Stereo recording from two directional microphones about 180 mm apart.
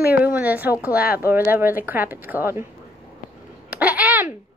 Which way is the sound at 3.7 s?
5° right (ahead or behind).